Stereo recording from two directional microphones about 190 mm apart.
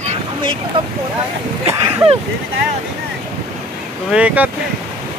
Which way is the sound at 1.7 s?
20° right (ahead or behind).